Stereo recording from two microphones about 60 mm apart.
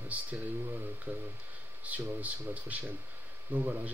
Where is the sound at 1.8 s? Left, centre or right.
Right.